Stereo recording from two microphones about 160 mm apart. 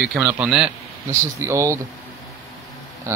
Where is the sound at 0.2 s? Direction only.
15° right (ahead or behind).